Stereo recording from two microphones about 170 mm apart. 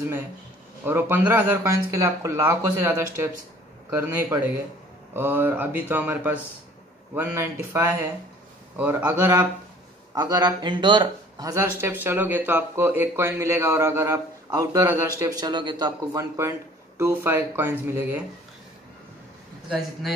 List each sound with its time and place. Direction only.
0.8 s speech: 10° right (ahead or behind)